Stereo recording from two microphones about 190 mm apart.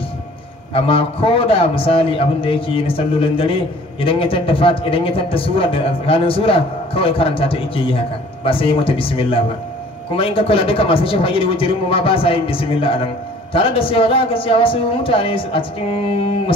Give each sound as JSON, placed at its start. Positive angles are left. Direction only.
{"t": 0.7, "sound": "a man's voice", "side_deg": 30}